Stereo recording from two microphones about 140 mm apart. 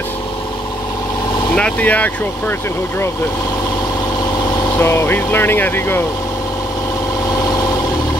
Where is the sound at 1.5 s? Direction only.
10° left (ahead or behind).